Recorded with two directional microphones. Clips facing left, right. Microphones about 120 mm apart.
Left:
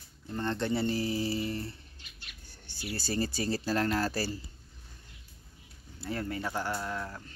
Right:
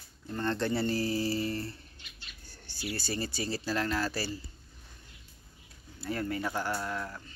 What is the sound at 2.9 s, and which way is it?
Speech, 40° left (ahead or behind).